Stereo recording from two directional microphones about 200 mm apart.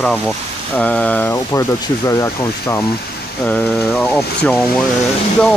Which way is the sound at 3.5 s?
5° left (ahead or behind).